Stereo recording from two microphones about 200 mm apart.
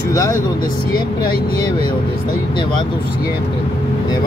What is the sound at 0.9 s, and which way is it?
Speech, 45° left (ahead or behind).